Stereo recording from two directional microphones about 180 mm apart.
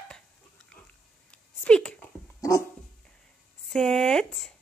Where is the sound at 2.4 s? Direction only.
15° left (ahead or behind).